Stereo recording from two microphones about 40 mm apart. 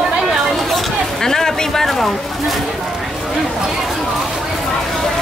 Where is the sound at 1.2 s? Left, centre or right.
Centre.